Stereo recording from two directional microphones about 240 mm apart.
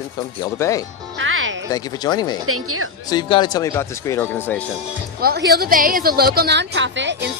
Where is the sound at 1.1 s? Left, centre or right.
Right.